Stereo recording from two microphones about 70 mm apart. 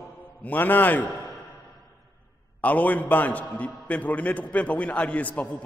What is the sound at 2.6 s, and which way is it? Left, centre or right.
A man's voice, left.